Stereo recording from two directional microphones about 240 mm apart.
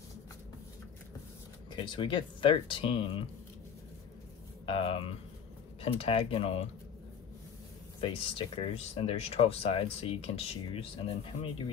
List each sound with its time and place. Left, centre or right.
1.7 s speech: centre
4.6 s a sound: left
5.8 s speech: left
8.0 s speech: left